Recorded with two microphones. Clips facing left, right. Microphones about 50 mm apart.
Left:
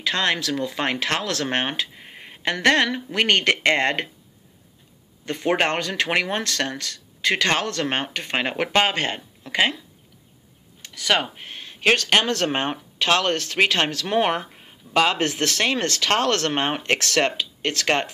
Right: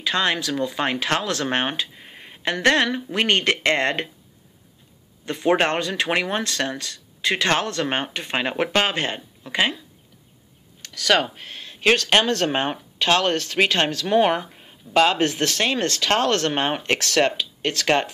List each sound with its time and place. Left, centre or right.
0.0 s speech: left
5.2 s speech: left
10.8 s speech: centre
11.4 s a sound: left
12.0 s speech: left
14.0 s speech: left
15.0 s speech: left